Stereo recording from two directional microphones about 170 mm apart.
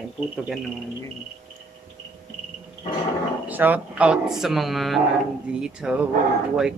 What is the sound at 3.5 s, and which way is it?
Speech, 10° right (ahead or behind).